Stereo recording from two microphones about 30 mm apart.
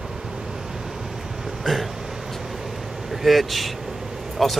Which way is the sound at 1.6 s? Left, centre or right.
Centre.